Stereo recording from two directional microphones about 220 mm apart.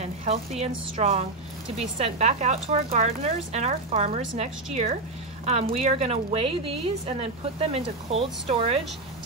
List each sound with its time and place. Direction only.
0.0 s a woman's voice: 30° right (ahead or behind)